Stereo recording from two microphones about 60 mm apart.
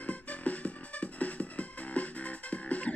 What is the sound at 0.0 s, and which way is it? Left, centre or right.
Music, left.